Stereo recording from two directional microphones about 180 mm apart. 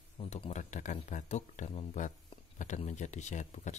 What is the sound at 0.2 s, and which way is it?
Speech, 35° left (ahead or behind).